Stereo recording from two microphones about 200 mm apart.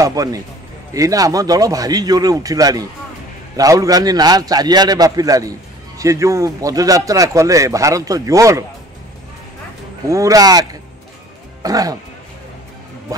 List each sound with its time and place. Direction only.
0.0 s a man's voice: 15° right (ahead or behind)
10.0 s speech: 15° right (ahead or behind)